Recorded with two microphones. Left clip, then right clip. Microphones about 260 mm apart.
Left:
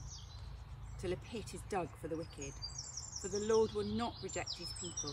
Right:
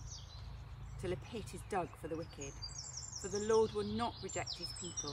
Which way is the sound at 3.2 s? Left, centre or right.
Centre.